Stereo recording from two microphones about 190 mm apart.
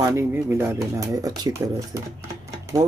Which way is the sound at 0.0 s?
15° right (ahead or behind).